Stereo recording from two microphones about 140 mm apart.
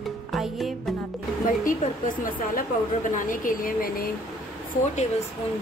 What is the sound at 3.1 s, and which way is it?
Speech, 70° left (ahead or behind).